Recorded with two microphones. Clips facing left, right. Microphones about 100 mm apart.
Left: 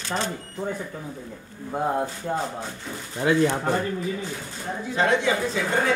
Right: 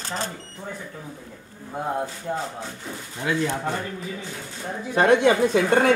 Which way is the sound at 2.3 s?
45° left (ahead or behind).